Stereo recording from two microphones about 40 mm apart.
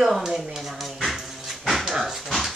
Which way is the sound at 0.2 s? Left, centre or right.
Centre.